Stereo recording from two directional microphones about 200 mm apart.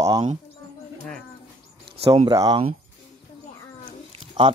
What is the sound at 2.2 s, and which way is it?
Speech, 20° right (ahead or behind).